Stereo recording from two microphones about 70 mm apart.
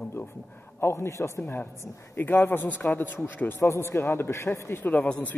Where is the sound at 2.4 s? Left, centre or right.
Left.